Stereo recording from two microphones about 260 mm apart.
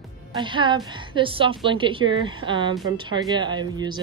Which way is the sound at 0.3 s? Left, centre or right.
Centre.